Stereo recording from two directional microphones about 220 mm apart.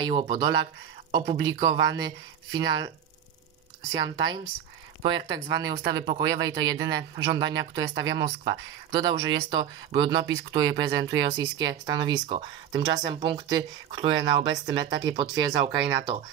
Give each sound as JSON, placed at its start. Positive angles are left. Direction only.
{"t": 0.0, "sound": "speech", "side_deg": -20}
{"t": 3.9, "sound": "speech", "side_deg": -20}